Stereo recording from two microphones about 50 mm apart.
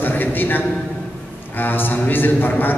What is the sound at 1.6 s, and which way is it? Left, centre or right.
A man's voice, left.